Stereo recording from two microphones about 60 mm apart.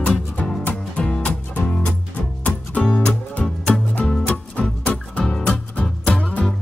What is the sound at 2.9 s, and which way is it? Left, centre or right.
Music, left.